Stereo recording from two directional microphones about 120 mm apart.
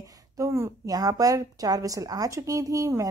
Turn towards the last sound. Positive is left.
turn(degrees=-30)  # may be behind; listen again after turning